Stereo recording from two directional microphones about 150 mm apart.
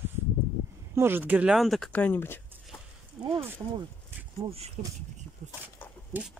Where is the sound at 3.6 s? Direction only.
25° right (ahead or behind).